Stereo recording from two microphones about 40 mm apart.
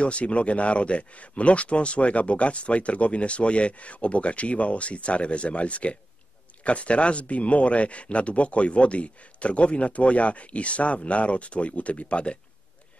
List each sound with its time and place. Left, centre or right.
0.0 s speech: left